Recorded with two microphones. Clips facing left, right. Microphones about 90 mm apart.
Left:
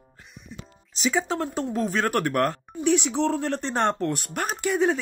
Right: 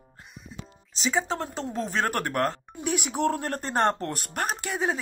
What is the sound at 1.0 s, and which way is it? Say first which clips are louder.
Speech: left 2 dB; 30° right (ahead or behind).